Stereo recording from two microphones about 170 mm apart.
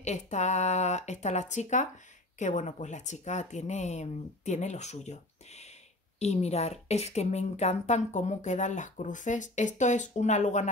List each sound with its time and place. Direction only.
0.0 s a woman's voice: 45° left (ahead or behind)